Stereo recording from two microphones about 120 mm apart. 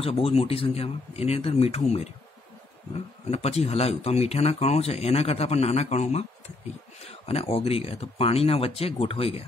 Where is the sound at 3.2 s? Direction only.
60° left (ahead or behind).